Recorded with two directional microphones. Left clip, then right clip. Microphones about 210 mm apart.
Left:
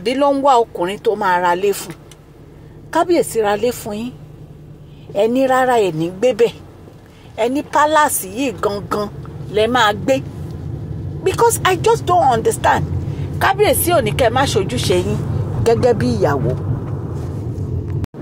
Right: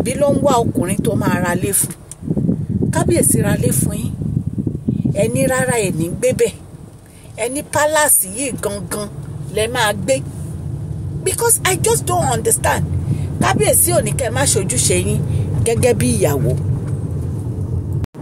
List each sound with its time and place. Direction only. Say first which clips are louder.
0.0 s speech: left 1 dB; 15° left (ahead or behind)
2.9 s speech: left 3 dB; 15° left (ahead or behind)
5.1 s speech: left 4 dB; 10° left (ahead or behind)
9.5 s speech: left 3 dB; 10° left (ahead or behind)
11.2 s a woman's voice: left 4 dB; 5° left (ahead or behind); by 15.1 s 10° right (ahead or behind)
15.3 s speech: left 5 dB; 20° right (ahead or behind)